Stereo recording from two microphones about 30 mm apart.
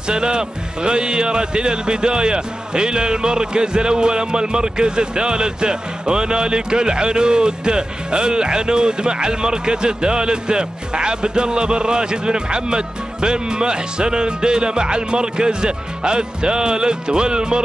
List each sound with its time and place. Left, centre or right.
0.1 s speech: right